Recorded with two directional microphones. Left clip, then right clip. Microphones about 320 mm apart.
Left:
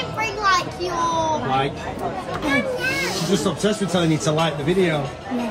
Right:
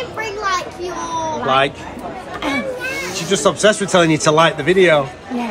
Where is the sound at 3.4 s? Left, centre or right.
Right.